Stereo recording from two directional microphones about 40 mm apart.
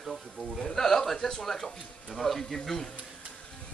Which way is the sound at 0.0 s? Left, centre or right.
Centre.